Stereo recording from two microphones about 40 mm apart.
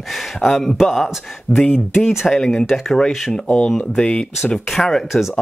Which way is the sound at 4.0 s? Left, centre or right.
Left.